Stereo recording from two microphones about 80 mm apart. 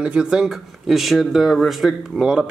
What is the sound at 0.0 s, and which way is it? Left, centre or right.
Speech, centre.